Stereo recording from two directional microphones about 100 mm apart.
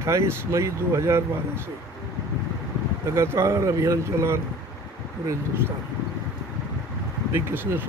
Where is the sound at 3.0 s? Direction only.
30° right (ahead or behind).